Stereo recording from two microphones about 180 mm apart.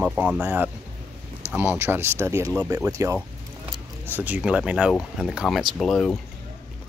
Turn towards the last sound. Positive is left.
turn(degrees=0)  # may be behind; listen again after turning